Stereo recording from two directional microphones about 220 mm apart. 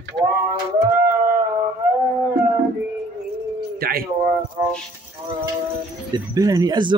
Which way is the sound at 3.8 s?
40° right (ahead or behind).